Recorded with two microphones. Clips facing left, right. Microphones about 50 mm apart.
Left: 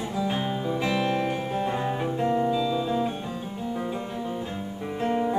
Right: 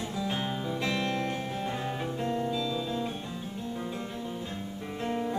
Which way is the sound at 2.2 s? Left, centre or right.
Centre.